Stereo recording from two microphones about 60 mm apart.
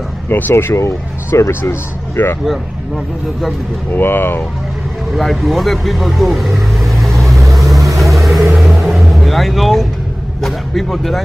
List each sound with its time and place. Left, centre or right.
0.3 s speech: left
0.7 s speech: left
3.9 s speech: left
5.1 s speech: centre
7.5 s vehicle: centre
10.4 s speech: centre